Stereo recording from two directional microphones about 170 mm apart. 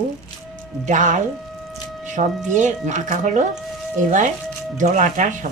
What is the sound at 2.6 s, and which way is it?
Speech, 45° right (ahead or behind).